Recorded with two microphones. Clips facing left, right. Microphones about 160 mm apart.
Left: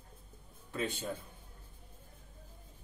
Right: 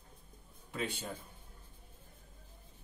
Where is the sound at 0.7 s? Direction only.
15° right (ahead or behind).